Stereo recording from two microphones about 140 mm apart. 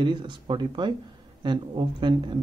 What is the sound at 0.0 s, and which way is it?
Speech, 35° right (ahead or behind).